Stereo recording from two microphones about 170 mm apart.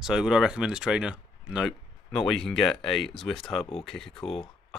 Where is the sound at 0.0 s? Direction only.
5° right (ahead or behind).